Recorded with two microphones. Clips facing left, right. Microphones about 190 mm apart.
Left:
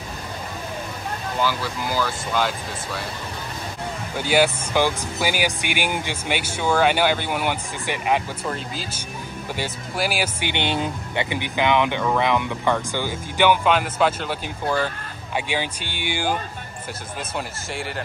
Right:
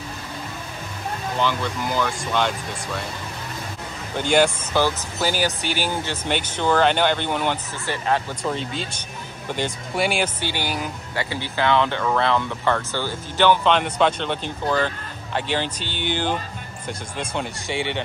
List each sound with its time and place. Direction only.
1.4 s speech: 5° left (ahead or behind)
4.2 s speech: 10° left (ahead or behind)
8.5 s speech: centre (ahead or behind)
10.4 s speech: 20° left (ahead or behind); by 18.0 s centre (ahead or behind)